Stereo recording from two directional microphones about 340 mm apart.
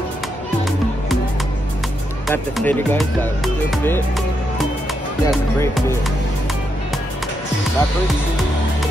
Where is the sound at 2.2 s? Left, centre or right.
Centre.